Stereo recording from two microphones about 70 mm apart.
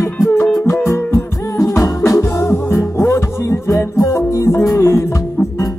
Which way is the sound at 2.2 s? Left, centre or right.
Left.